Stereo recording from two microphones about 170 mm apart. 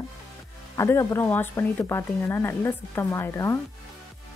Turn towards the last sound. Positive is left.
turn(degrees=15)  # may be behind; listen again after turning